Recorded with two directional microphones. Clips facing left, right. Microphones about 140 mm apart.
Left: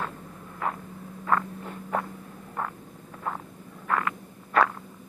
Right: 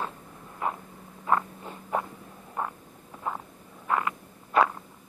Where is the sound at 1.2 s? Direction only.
15° right (ahead or behind).